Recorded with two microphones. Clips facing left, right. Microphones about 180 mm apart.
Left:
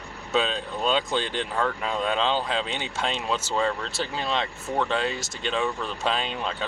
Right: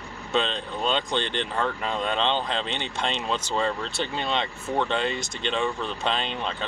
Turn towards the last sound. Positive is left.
turn(degrees=5)  # may be behind; listen again after turning